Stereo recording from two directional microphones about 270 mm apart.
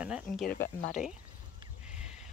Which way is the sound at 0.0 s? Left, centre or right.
Centre.